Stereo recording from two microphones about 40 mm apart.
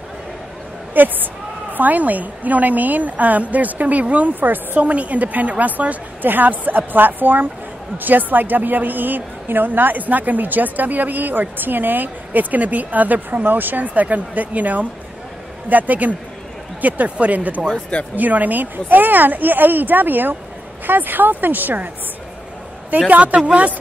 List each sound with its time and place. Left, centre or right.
0.9 s a woman's voice: right
4.3 s a woman's voice: right
4.8 s a woman's voice: right
22.8 s speech: right